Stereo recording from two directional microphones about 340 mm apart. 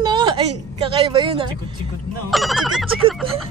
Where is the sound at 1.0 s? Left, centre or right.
Centre.